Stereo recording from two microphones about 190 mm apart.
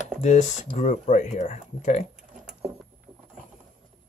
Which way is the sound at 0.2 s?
40° left (ahead or behind).